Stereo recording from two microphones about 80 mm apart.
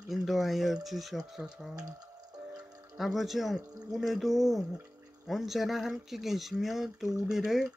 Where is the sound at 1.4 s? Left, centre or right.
Centre.